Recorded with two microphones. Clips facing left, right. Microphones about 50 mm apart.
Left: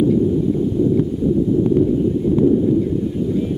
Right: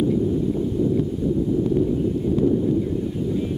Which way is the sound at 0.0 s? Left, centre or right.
Centre.